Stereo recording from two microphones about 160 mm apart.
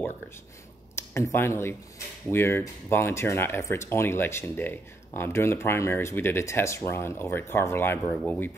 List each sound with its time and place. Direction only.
0.9 s speech: 15° left (ahead or behind)